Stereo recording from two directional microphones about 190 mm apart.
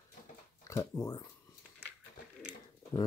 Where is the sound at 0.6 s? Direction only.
15° left (ahead or behind).